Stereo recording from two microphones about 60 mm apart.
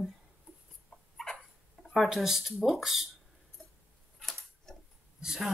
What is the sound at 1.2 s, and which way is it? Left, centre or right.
Dog, centre.